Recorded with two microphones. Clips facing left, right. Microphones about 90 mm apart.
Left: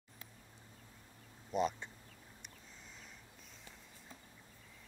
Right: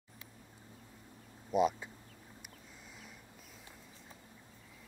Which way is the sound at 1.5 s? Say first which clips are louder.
Right 5 dB; 5° right (ahead or behind).